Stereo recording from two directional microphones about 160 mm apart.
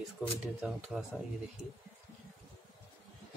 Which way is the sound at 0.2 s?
10° right (ahead or behind).